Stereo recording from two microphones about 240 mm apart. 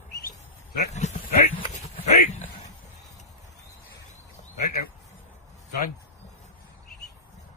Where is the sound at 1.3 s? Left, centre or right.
Left.